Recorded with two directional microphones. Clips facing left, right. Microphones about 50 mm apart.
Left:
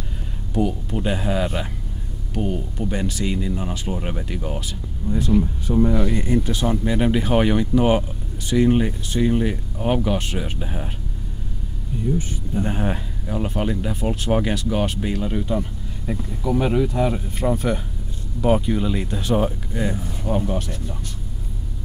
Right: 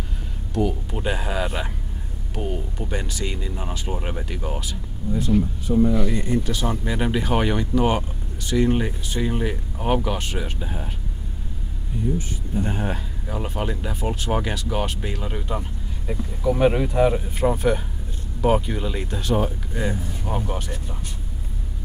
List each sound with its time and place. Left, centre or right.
0.5 s speech: centre
5.9 s speech: left
6.7 s speech: centre
12.6 s speech: centre
13.3 s speech: centre
16.5 s speech: right
17.1 s speech: centre